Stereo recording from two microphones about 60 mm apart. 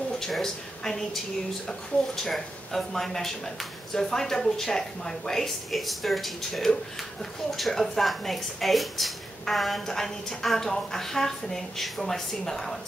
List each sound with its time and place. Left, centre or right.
0.2 s a woman's voice: centre
2.2 s a woman's voice: centre